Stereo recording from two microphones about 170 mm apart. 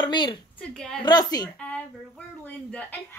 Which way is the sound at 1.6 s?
5° left (ahead or behind).